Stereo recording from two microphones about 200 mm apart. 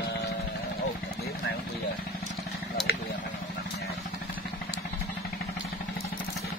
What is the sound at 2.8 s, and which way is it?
Vehicle, centre (ahead or behind).